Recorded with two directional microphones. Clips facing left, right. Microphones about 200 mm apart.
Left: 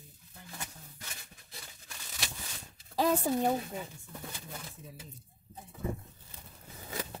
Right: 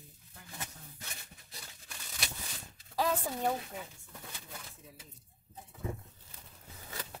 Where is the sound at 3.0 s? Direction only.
25° left (ahead or behind).